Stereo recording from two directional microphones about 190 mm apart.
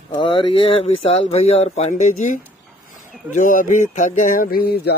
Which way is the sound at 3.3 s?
40° left (ahead or behind).